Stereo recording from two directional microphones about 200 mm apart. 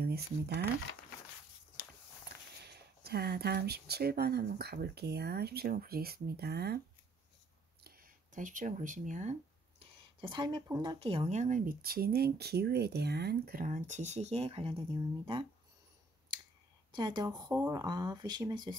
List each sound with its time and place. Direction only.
0.0 s speech: 50° right (ahead or behind)
2.6 s speech: 50° right (ahead or behind)
7.8 s a sound: 45° right (ahead or behind); by 10.6 s 25° right (ahead or behind)
10.8 s speech: 25° right (ahead or behind)
16.9 s speech: 20° right (ahead or behind)